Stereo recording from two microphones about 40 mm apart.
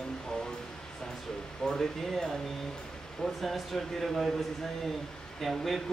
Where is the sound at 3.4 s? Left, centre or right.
Centre.